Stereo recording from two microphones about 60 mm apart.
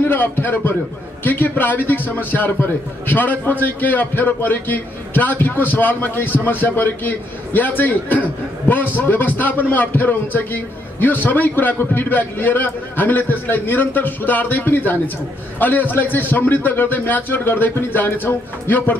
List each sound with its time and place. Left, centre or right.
0.1 s a man's voice: left